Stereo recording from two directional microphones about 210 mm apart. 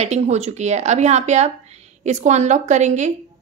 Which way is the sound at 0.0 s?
30° right (ahead or behind).